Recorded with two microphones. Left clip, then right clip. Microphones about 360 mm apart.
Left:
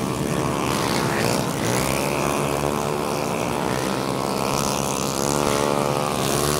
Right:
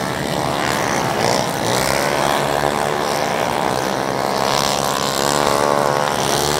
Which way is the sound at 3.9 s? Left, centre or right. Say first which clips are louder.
Right 5 dB; right.